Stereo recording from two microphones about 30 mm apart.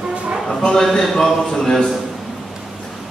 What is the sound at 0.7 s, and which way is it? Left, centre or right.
Speech, left.